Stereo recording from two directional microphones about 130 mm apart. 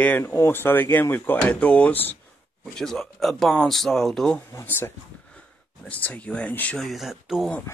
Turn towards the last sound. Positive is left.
turn(degrees=-5)  # may be behind; listen again after turning